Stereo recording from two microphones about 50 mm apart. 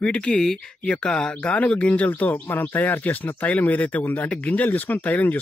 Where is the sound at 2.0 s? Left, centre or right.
Left.